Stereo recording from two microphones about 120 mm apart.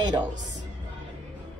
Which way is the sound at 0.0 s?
35° right (ahead or behind).